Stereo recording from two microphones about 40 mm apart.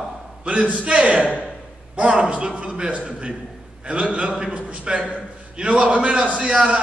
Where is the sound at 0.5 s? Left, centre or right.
Right.